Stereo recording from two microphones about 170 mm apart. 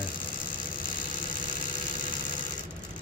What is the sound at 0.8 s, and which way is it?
Vehicle, 50° left (ahead or behind).